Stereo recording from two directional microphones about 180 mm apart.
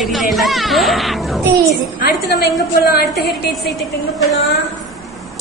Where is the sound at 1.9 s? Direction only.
60° left (ahead or behind).